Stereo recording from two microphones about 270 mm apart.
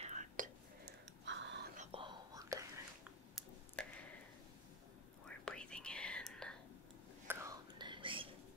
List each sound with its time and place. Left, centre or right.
0.0 s whispering: right
1.2 s whispering: right
1.8 s whispering: centre
3.3 s a sound: centre
5.2 s whispering: centre
7.2 s whispering: centre